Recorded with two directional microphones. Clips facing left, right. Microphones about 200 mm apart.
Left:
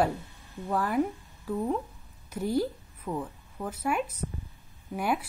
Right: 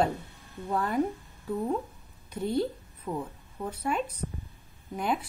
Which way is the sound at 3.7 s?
10° left (ahead or behind).